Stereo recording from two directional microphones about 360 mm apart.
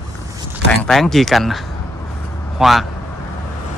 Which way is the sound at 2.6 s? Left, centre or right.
Centre.